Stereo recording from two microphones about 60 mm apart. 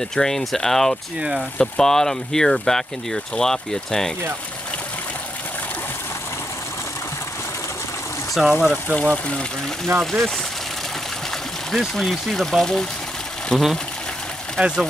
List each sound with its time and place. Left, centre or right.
0.1 s speech: centre
8.4 s speech: centre
8.9 s speech: centre
9.9 s speech: centre
11.9 s speech: centre
14.6 s speech: centre